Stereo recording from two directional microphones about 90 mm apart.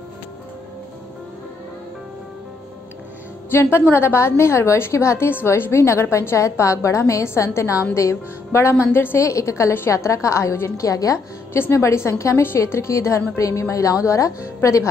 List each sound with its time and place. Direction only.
3.4 s a woman's voice: 25° left (ahead or behind)